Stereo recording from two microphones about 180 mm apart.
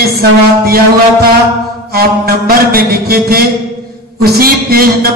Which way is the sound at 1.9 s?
60° right (ahead or behind).